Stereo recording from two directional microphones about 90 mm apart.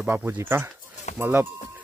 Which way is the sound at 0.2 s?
20° right (ahead or behind).